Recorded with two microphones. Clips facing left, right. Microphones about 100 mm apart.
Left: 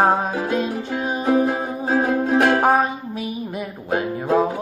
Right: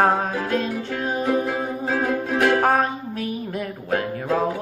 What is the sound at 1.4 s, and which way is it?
Music, 25° left (ahead or behind).